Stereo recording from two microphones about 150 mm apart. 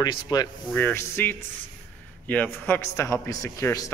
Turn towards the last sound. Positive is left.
turn(degrees=25)  # may be behind; listen again after turning